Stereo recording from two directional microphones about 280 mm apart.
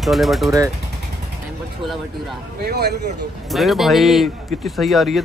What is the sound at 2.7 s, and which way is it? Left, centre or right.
Speech, right.